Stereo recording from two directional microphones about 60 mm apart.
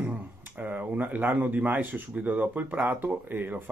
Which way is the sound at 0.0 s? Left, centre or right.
Right.